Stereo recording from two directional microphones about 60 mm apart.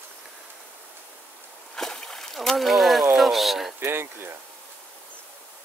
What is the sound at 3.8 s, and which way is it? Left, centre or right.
Speech, right.